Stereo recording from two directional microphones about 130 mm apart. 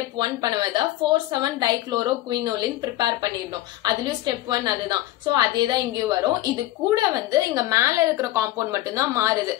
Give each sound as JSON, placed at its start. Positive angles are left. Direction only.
{"t": 0.2, "sound": "a woman's voice", "side_deg": -35}